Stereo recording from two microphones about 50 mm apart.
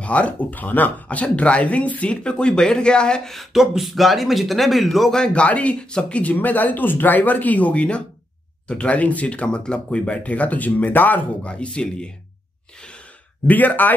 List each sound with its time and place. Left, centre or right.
0.0 s speech: left
3.5 s speech: centre
5.1 s speech: centre
6.3 s speech: left
11.4 s speech: left
13.5 s speech: left